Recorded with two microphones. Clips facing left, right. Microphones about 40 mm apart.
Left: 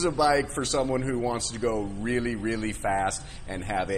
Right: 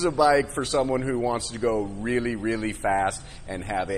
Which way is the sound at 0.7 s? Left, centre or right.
Right.